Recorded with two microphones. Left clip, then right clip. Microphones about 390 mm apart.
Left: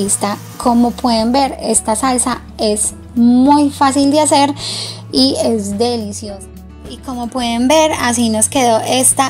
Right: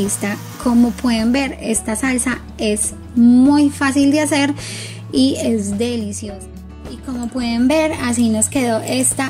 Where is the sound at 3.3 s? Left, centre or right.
Left.